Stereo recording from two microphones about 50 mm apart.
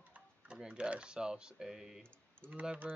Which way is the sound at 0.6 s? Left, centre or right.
Right.